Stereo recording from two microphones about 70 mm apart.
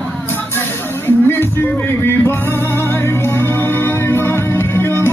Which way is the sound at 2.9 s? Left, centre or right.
Left.